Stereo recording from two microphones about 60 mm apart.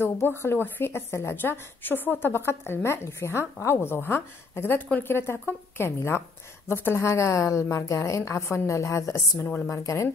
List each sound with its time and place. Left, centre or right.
0.4 s a woman's voice: left